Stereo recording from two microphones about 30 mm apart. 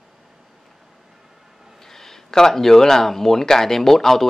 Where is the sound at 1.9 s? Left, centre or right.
Centre.